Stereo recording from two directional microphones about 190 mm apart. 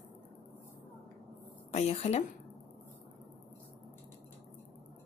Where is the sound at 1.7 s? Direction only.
35° left (ahead or behind).